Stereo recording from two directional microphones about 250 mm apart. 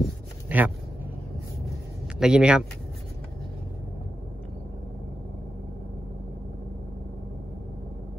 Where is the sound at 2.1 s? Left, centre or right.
Centre.